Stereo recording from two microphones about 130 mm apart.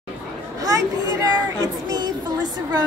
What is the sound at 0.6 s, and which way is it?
Chatter, 30° right (ahead or behind).